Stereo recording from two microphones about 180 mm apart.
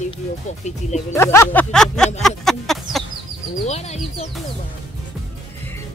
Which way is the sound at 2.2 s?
Centre (ahead or behind).